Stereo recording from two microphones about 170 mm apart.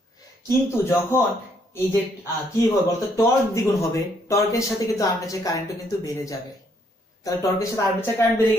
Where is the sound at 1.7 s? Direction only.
15° left (ahead or behind).